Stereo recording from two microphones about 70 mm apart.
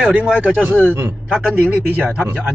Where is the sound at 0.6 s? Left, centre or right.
Right.